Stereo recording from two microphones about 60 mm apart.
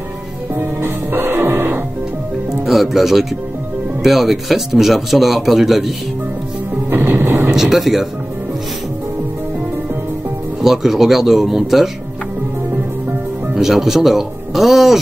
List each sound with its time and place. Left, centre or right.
0.6 s music: right
2.6 s music: centre
4.0 s speech: centre
6.9 s music: right
7.5 s speech: centre
10.6 s speech: centre
13.6 s speech: centre